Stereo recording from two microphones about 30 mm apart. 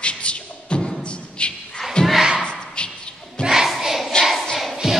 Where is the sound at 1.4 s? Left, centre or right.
Left.